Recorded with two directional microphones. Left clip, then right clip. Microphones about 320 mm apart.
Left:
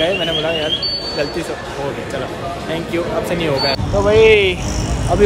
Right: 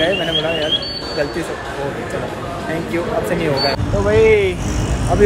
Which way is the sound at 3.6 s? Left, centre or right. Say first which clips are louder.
Left 2 dB; centre.